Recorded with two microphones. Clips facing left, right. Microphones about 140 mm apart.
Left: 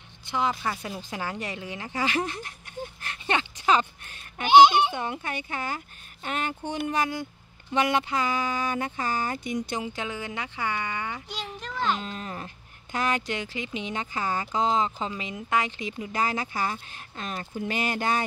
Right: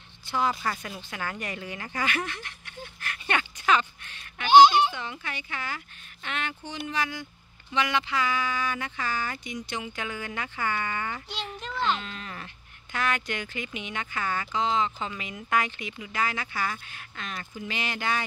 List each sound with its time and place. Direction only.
0.3 s speech: 20° left (ahead or behind)
0.9 s speech: 30° left (ahead or behind)
4.4 s a child's voice: 20° left (ahead or behind)
4.9 s speech: 50° left (ahead or behind)
9.9 s a child's voice: 25° left (ahead or behind); by 12.0 s 10° left (ahead or behind)
12.0 s speech: 35° left (ahead or behind)
16.0 s speech: 40° left (ahead or behind)